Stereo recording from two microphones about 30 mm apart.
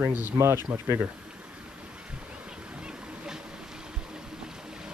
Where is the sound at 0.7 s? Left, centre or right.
Right.